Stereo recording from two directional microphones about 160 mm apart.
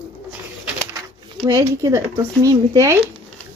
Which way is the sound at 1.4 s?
20° right (ahead or behind).